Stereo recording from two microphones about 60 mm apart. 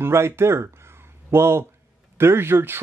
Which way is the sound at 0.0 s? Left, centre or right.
Right.